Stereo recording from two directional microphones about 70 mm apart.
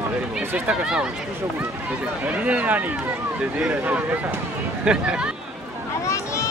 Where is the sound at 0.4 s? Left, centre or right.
Right.